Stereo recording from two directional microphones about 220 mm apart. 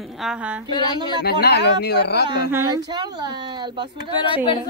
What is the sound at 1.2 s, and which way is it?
Speech, 50° left (ahead or behind).